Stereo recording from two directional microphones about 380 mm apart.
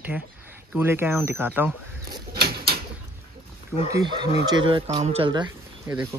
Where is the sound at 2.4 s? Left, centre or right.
Right.